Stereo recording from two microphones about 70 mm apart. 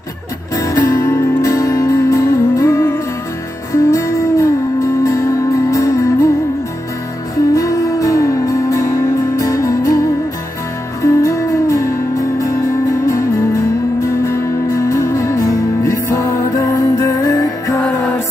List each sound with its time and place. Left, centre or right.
0.6 s music: left
7.5 s music: left